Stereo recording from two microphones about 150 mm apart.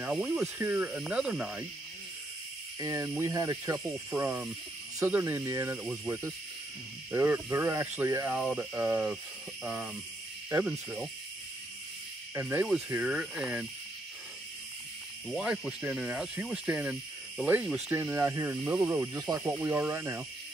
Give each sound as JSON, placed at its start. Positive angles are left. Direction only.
{"t": 0.0, "sound": "speech", "side_deg": -5}
{"t": 2.8, "sound": "speech", "side_deg": -20}
{"t": 12.4, "sound": "speech", "side_deg": -10}
{"t": 15.2, "sound": "speech", "side_deg": -5}